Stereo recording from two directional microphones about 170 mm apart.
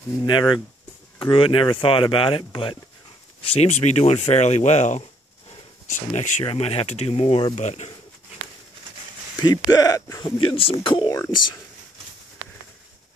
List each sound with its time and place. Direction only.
0.2 s speech: 25° left (ahead or behind); by 7.9 s 40° left (ahead or behind)
9.4 s speech: 25° left (ahead or behind)